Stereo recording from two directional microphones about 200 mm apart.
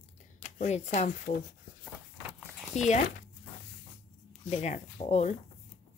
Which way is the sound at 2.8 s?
35° left (ahead or behind).